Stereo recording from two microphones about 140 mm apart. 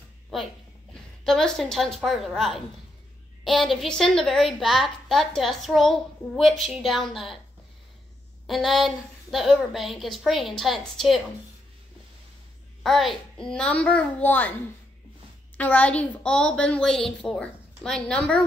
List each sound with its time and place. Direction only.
1.2 s a woman's voice: 5° left (ahead or behind)
8.5 s a woman's voice: centre (ahead or behind)
12.8 s a woman's voice: centre (ahead or behind)
15.5 s a woman's voice: 10° left (ahead or behind)